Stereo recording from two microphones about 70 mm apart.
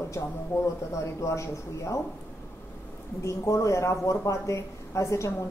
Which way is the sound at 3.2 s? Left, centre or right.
Left.